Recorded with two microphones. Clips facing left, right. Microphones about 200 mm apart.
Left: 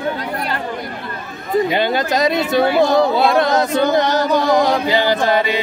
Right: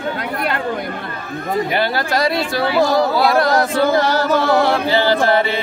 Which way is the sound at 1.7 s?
20° left (ahead or behind).